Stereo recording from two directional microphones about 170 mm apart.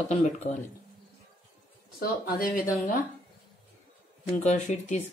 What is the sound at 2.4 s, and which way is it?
Speech, 55° left (ahead or behind).